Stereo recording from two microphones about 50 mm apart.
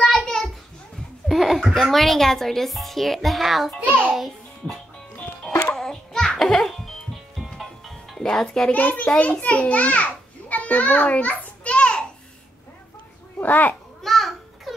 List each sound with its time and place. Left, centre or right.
0.3 s a sound: centre
1.3 s a woman's voice: centre
3.8 s a child's voice: right
4.1 s music: centre
5.8 s babbling: centre
6.6 s music: centre
8.2 s a child's voice: centre
8.7 s a child's voice: left
13.4 s a child's voice: left
14.0 s a sound: centre